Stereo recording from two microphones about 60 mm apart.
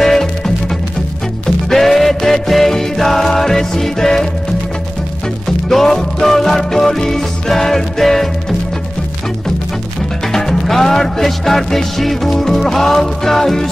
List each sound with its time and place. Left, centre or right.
0.0 s music: centre
1.7 s music: centre
5.7 s music: centre
10.3 s music: centre